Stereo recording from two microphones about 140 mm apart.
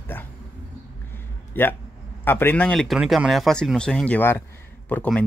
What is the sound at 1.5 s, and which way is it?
A man's voice, 15° left (ahead or behind).